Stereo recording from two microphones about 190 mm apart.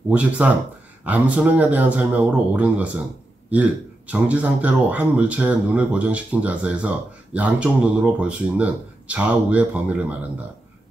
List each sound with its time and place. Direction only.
0.1 s speech: 5° right (ahead or behind)
4.1 s speech: 5° right (ahead or behind)